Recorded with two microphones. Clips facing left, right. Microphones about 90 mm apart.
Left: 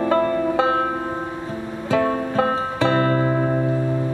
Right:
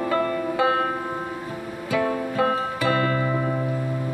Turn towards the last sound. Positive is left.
turn(degrees=45)  # may be behind; listen again after turning